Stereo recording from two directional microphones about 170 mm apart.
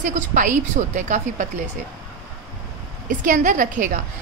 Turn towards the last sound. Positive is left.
turn(degrees=-50)  # may be behind; listen again after turning